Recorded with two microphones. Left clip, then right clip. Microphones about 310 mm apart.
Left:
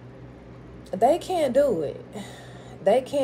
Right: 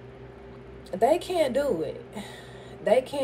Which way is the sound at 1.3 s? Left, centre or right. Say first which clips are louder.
Left 3 dB; centre.